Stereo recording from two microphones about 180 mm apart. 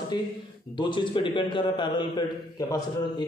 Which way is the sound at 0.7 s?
25° left (ahead or behind).